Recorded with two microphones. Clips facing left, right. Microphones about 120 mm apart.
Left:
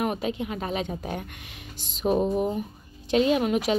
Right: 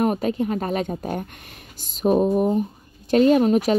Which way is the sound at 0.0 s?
45° right (ahead or behind).